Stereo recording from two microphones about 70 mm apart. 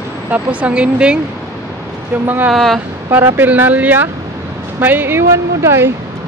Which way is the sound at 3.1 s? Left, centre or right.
Right.